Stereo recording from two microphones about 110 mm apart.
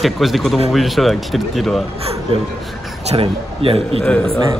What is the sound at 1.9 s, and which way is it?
Speech, 65° right (ahead or behind).